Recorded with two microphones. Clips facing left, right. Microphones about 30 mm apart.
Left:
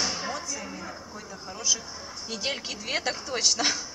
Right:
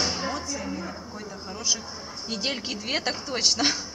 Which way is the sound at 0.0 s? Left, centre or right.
Centre.